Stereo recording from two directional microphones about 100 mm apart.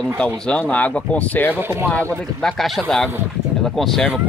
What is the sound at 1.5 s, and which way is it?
Speech, 20° right (ahead or behind).